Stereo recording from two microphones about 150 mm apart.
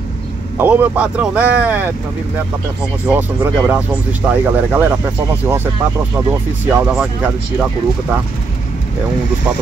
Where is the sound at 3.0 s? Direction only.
10° right (ahead or behind).